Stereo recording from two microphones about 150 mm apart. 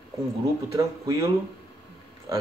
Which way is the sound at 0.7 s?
20° right (ahead or behind).